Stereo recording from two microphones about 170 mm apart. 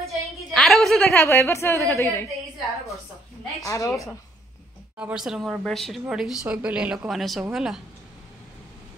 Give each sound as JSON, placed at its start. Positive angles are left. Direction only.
{"t": 0.0, "sound": "a sound", "side_deg": 0}
{"t": 1.2, "sound": "a woman's voice", "side_deg": 15}
{"t": 3.6, "sound": "a woman's voice", "side_deg": 20}
{"t": 4.9, "sound": "speech", "side_deg": -5}